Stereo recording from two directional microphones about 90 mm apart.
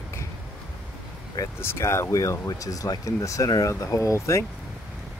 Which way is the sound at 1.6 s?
30° left (ahead or behind).